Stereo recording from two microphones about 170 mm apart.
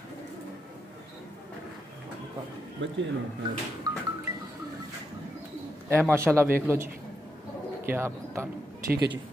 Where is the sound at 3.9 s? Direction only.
20° right (ahead or behind).